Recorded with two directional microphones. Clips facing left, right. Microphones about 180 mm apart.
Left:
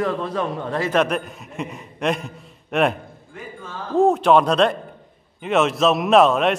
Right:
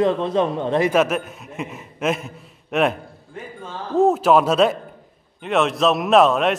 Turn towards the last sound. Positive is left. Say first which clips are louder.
# even
turn(degrees=0)  # may be behind; listen again after turning